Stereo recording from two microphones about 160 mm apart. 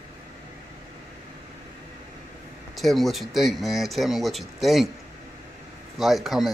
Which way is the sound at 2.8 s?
Centre (ahead or behind).